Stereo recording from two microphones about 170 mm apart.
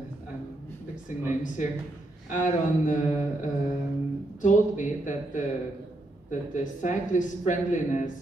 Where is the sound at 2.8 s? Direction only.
45° left (ahead or behind).